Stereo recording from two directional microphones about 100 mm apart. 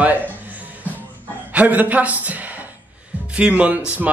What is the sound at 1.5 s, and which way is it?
Speech, 15° right (ahead or behind).